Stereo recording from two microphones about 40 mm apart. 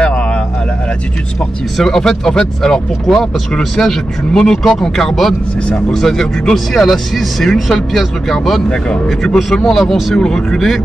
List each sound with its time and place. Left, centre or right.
0.0 s a sound: left
1.8 s speech: centre
8.6 s speech: left
9.2 s speech: centre